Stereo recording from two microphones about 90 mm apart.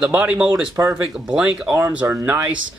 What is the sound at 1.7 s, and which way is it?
Speech, 30° right (ahead or behind).